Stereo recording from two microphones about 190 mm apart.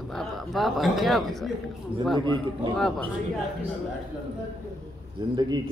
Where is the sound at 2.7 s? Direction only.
Centre (ahead or behind).